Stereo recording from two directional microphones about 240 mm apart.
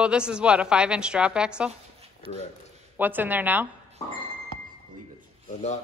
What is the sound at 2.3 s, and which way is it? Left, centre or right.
Speech, left.